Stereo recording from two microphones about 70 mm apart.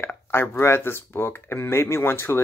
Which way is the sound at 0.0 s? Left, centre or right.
Left.